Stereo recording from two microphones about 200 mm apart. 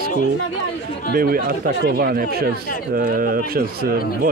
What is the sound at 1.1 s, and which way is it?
Speech, 45° right (ahead or behind).